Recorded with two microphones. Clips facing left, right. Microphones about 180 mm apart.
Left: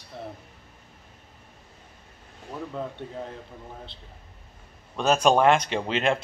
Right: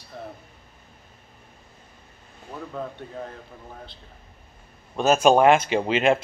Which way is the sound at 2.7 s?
25° left (ahead or behind).